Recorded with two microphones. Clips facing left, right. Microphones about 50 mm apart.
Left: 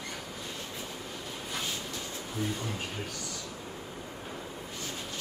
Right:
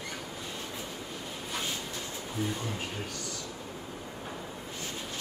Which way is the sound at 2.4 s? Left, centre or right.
Right.